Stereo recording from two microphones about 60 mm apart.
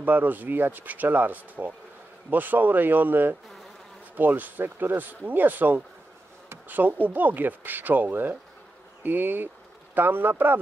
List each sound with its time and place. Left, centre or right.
0.0 s speech: right